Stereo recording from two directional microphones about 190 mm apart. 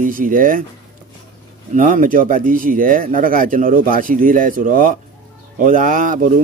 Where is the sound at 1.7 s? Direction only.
45° right (ahead or behind).